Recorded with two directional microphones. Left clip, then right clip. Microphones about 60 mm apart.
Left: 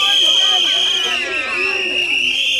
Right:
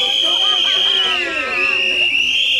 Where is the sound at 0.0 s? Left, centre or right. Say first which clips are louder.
Left 2 dB; left.